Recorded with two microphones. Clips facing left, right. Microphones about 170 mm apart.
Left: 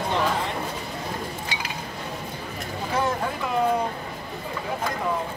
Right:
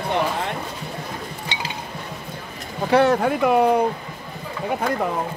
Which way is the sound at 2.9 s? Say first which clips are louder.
Right 9 dB; 70° right (ahead or behind).